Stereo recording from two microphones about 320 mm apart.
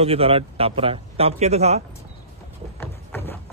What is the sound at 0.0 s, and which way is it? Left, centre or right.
Speech, centre.